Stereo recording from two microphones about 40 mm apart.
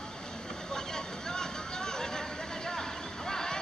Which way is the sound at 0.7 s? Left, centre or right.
Centre.